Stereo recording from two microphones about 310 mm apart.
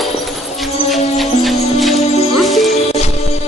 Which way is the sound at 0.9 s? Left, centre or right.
Centre.